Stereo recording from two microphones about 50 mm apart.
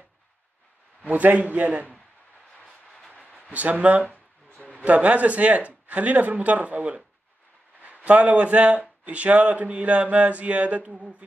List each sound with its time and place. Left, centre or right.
1.0 s mantra: right
3.1 s a sound: left
3.5 s speech: right
4.6 s a sound: left
4.8 s mantra: right
7.8 s speech: right
9.0 s mantra: right